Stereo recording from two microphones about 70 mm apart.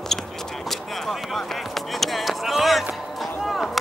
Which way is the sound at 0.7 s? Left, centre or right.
Centre.